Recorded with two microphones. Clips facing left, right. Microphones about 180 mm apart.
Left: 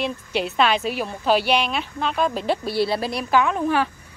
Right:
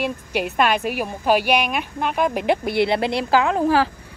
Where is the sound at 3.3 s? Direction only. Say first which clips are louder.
Even; 90° right.